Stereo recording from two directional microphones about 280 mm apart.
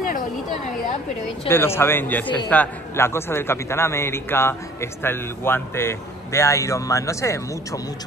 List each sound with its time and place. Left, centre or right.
1.5 s a man's voice: centre